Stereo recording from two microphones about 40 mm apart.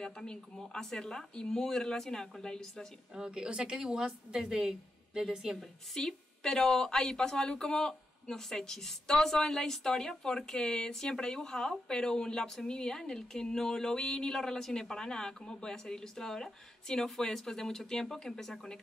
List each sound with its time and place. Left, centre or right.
0.0 s a woman's voice: centre
3.2 s a woman's voice: right
5.9 s a woman's voice: centre